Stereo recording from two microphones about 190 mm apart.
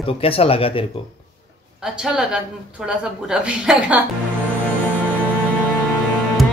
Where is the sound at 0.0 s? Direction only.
30° left (ahead or behind).